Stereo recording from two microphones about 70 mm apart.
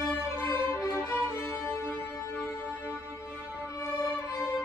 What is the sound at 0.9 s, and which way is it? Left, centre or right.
Music, left.